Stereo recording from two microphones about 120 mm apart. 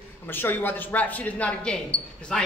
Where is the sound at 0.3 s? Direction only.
15° left (ahead or behind).